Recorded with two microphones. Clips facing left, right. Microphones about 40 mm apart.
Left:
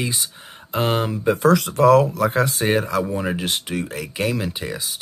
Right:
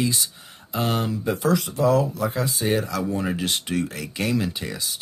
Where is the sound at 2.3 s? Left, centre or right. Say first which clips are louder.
Left 5 dB; left.